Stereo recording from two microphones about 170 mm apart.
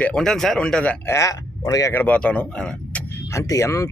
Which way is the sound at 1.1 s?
20° left (ahead or behind).